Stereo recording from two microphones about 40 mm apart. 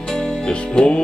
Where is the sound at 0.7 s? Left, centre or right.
Left.